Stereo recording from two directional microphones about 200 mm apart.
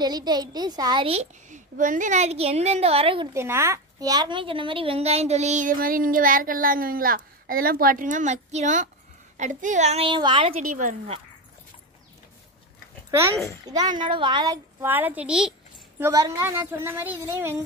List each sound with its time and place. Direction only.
0.0 s a woman's voice: 20° right (ahead or behind)
3.3 s a woman's voice: 15° right (ahead or behind)
10.6 s a woman's voice: 40° right (ahead or behind)
13.8 s a woman's voice: 25° right (ahead or behind); by 15.5 s 5° right (ahead or behind)
16.0 s a woman's voice: 15° right (ahead or behind)